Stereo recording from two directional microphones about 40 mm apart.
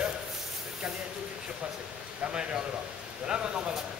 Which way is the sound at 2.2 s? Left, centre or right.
Right.